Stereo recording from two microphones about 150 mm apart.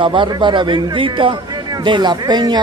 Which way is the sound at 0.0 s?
35° right (ahead or behind).